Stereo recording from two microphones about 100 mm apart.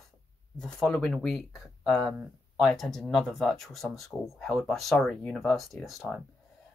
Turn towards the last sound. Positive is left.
turn(degrees=0)  # may be behind; listen again after turning